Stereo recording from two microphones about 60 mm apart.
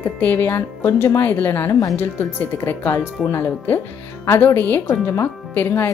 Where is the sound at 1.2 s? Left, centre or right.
Left.